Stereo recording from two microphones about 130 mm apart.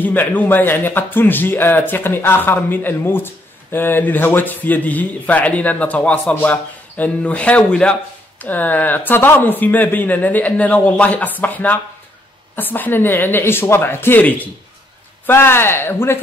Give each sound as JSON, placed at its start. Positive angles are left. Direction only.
{"t": 0.0, "sound": "speech", "side_deg": 15}